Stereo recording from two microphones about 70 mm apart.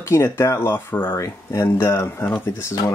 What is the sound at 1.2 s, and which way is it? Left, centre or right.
Speech, left.